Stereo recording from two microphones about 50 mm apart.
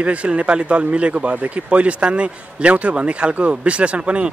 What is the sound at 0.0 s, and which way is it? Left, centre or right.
A man's voice, right.